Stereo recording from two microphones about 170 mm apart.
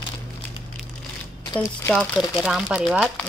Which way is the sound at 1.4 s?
20° left (ahead or behind).